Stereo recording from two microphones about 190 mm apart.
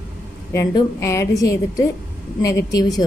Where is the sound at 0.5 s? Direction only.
15° left (ahead or behind).